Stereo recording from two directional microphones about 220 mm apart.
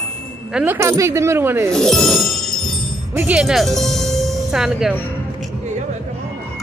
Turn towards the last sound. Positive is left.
turn(degrees=-5)  # may be behind; listen again after turning